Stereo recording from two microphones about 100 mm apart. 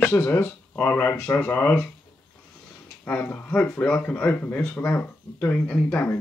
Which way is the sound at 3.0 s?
15° left (ahead or behind).